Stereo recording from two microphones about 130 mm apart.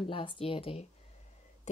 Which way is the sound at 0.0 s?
40° left (ahead or behind).